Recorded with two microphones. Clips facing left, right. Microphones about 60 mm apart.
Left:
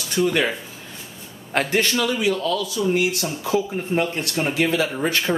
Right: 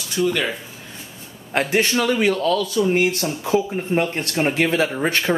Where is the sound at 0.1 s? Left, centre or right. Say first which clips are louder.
Even; left.